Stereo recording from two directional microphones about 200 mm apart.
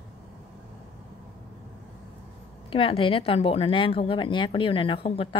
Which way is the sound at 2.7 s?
25° left (ahead or behind).